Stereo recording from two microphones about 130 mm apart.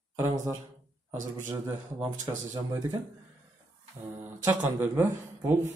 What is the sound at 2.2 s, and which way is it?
Speech, 30° right (ahead or behind).